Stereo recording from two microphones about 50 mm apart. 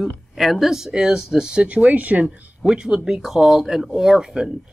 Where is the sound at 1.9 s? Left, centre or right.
Right.